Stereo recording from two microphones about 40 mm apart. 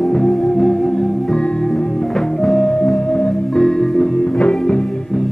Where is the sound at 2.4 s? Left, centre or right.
Centre.